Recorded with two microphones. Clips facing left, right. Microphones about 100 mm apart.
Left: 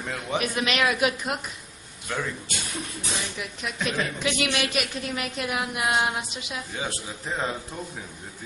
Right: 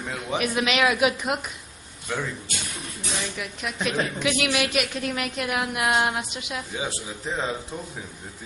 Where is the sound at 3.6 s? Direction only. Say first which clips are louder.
Right 2 dB; 5° right (ahead or behind).